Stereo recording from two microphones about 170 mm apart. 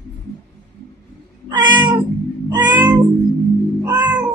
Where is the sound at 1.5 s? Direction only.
25° right (ahead or behind).